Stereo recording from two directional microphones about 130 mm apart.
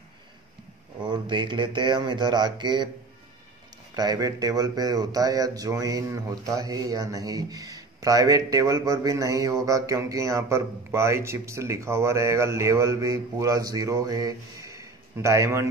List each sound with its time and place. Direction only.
1.0 s speech: 35° right (ahead or behind)
3.9 s speech: 30° right (ahead or behind)